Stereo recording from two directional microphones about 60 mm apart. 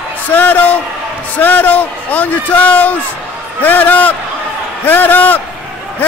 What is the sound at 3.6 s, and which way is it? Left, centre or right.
A man's voice, left.